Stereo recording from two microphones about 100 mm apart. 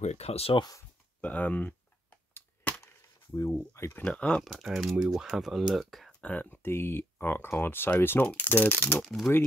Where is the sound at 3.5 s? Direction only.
25° left (ahead or behind).